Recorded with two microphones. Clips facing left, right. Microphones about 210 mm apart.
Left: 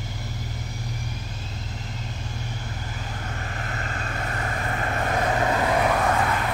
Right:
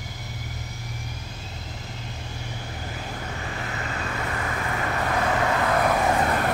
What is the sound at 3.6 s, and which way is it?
Vehicle, 45° left (ahead or behind).